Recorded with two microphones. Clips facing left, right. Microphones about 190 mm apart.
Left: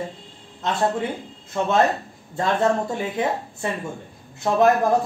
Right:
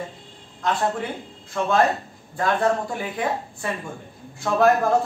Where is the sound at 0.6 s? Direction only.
25° left (ahead or behind).